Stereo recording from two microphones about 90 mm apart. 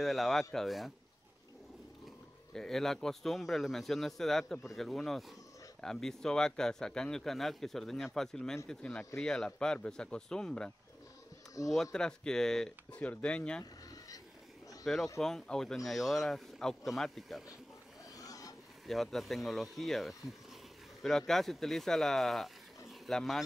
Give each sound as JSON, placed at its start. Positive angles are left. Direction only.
{"t": 0.0, "sound": "speech", "side_deg": 0}
{"t": 2.5, "sound": "speech", "side_deg": 5}
{"t": 11.7, "sound": "speech", "side_deg": 5}
{"t": 15.1, "sound": "speech", "side_deg": 5}
{"t": 18.1, "sound": "a sound", "side_deg": 40}
{"t": 18.9, "sound": "speech", "side_deg": 0}